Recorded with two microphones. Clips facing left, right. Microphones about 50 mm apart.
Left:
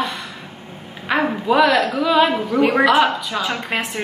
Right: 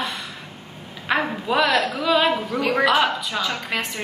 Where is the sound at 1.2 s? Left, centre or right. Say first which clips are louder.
Left 8 dB; centre.